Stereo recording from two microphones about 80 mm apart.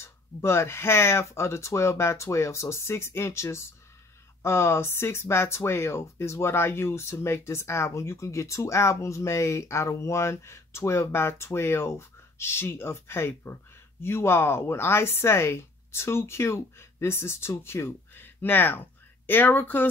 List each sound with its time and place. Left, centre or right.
0.0 s speech: left